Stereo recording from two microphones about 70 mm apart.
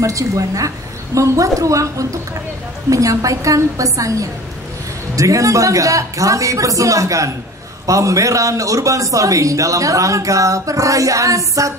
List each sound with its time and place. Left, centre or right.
0.0 s a man's voice: right